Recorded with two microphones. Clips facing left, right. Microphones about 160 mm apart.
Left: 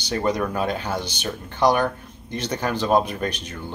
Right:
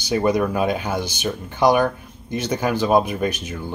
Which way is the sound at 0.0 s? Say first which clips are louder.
Right 4 dB; 10° right (ahead or behind).